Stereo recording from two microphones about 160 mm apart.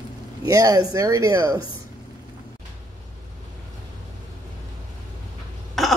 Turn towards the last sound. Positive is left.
turn(degrees=0)  # may be behind; listen again after turning